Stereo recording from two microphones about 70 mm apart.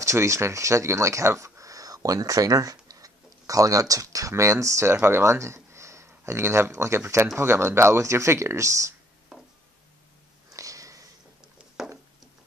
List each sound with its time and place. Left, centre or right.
0.0 s speech: right
10.5 s sniff: right
11.5 s a sound: centre